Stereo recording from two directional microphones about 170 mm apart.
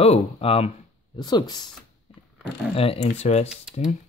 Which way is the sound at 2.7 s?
35° left (ahead or behind).